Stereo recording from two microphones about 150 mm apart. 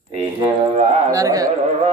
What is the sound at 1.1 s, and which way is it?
Speech, 20° right (ahead or behind).